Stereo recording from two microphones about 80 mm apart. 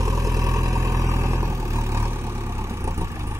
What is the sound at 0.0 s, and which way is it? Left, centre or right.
Vehicle, right.